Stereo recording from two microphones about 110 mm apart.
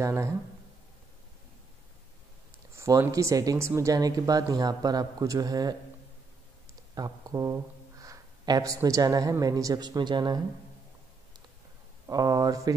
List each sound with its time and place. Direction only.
0.0 s speech: 25° right (ahead or behind)
2.7 s speech: 25° right (ahead or behind)
7.0 s speech: 35° right (ahead or behind)
12.1 s speech: 35° right (ahead or behind)